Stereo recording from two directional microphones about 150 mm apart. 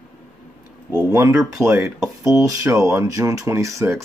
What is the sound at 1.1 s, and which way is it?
Speech, 20° right (ahead or behind).